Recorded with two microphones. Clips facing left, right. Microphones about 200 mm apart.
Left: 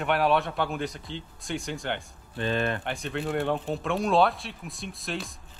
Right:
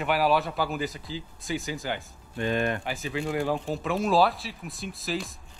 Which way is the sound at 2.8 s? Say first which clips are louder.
Even; centre (ahead or behind).